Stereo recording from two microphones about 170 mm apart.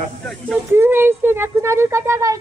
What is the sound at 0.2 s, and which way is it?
Speech, centre (ahead or behind).